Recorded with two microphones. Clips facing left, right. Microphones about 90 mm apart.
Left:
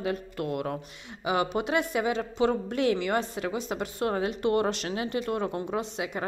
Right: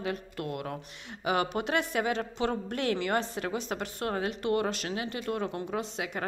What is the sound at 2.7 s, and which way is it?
Speech, 40° right (ahead or behind).